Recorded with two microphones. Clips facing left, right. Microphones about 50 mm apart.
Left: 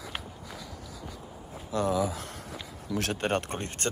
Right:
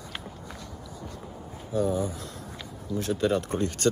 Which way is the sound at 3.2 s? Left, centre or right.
Left.